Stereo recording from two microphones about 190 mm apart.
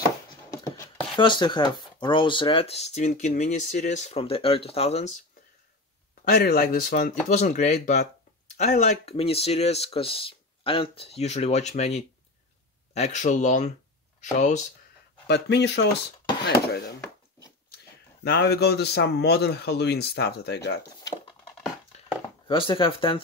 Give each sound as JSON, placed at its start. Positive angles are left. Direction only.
{"t": 1.1, "sound": "speech", "side_deg": 25}
{"t": 6.2, "sound": "speech", "side_deg": 55}
{"t": 15.2, "sound": "speech", "side_deg": 60}
{"t": 18.2, "sound": "speech", "side_deg": 60}
{"t": 22.5, "sound": "speech", "side_deg": 25}